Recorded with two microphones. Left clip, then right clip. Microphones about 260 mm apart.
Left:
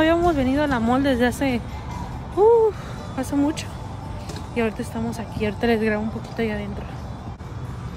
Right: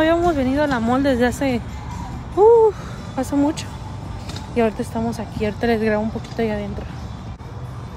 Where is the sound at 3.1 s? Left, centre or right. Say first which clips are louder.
Right 3 dB; centre.